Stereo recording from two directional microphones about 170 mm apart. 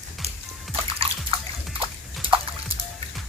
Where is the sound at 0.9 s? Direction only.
35° right (ahead or behind).